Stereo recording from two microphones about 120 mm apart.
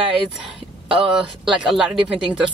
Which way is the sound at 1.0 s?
5° right (ahead or behind).